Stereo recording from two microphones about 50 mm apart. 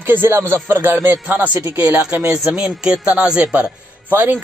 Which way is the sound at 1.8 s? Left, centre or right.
Right.